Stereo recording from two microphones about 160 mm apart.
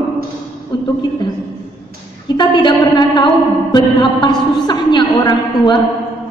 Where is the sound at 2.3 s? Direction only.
30° left (ahead or behind).